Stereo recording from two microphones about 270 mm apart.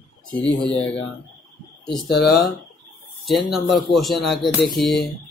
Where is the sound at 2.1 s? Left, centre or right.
Left.